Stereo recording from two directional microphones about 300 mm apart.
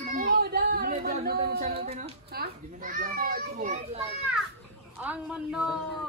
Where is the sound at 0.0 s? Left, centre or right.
Right.